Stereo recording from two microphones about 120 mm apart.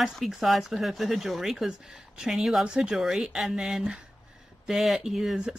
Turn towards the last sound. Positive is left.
turn(degrees=-5)  # may be behind; listen again after turning